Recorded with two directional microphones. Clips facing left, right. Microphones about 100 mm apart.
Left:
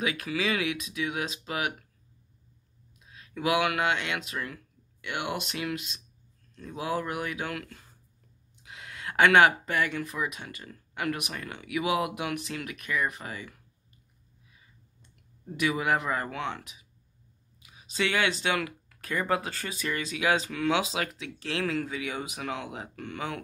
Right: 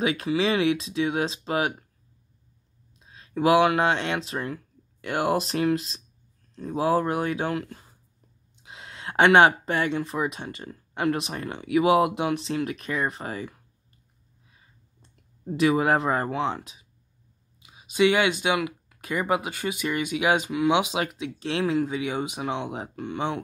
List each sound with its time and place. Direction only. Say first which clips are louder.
0.0 s speech: right 6 dB; 25° right (ahead or behind)
3.0 s speech: right 8 dB; 30° right (ahead or behind)
14.5 s clicking: right 1 dB; 35° right (ahead or behind)
17.6 s speech: right 9 dB; 20° right (ahead or behind)